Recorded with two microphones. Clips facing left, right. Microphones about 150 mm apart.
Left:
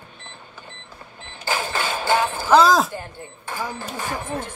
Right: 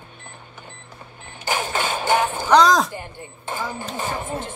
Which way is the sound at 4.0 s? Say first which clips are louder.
Right 1 dB; 25° right (ahead or behind).